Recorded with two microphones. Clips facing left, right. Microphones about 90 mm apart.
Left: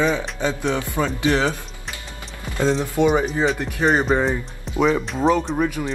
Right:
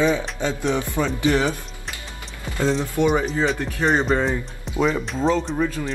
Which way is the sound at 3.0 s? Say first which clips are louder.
Left 2 dB; 15° left (ahead or behind).